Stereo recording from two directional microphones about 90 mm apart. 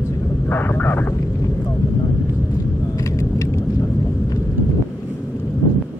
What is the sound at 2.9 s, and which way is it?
Vehicle, 35° left (ahead or behind).